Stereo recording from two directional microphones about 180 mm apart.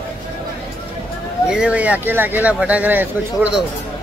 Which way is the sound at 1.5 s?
5° right (ahead or behind).